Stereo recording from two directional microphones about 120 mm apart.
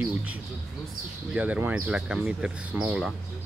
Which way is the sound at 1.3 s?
10° right (ahead or behind).